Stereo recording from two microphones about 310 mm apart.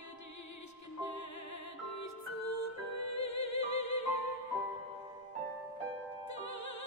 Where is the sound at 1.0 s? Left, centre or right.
Left.